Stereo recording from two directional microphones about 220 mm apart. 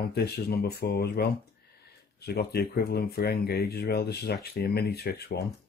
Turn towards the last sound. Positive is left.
turn(degrees=45)  # may be behind; listen again after turning